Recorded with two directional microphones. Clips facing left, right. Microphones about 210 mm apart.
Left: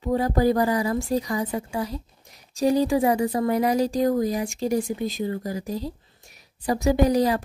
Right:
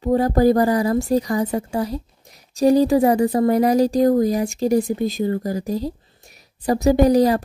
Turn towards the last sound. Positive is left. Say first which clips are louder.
# right 5 dB
turn(degrees=-40)  # may be behind; listen again after turning